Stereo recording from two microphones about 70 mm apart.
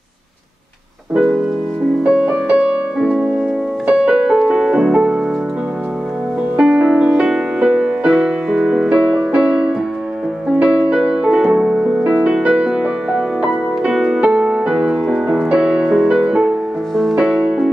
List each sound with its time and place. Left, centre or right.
1.1 s music: centre
2.0 s music: centre
6.5 s music: centre
15.0 s music: centre
15.5 s music: centre